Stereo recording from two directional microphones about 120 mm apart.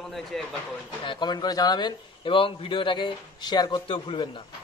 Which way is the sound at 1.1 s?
40° left (ahead or behind).